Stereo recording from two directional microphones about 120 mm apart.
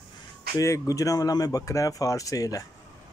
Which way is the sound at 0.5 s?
25° left (ahead or behind).